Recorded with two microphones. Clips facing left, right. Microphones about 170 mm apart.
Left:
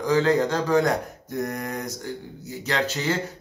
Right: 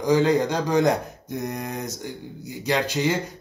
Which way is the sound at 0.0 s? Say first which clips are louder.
Right 1 dB; 15° right (ahead or behind).